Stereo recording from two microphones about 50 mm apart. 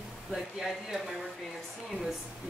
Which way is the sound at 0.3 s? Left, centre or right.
Centre.